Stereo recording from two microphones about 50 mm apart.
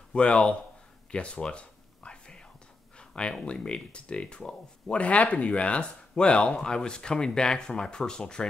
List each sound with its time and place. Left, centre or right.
0.1 s speech: left
1.1 s a sound: left
3.4 s speech: centre
4.8 s speech: left